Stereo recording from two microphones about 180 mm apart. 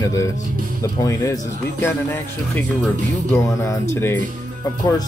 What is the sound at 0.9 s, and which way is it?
Speech, 20° left (ahead or behind).